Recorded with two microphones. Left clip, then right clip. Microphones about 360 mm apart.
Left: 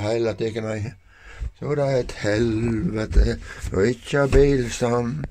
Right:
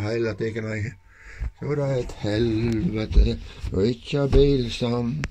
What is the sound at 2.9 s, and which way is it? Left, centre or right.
Speech, left.